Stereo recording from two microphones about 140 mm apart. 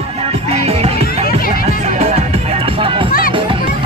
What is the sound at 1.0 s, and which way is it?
Music, 90° left.